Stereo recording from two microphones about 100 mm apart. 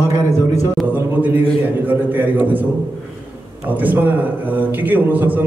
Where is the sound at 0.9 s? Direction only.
20° right (ahead or behind).